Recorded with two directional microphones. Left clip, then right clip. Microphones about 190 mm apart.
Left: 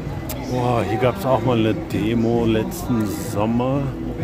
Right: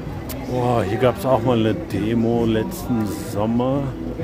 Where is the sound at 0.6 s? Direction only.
10° right (ahead or behind).